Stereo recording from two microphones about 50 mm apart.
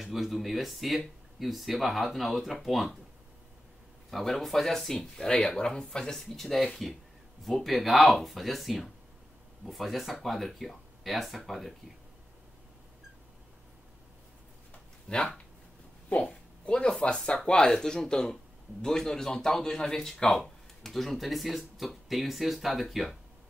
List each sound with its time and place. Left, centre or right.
0.0 s speech: centre
4.1 s a man's voice: centre
15.0 s a man's voice: centre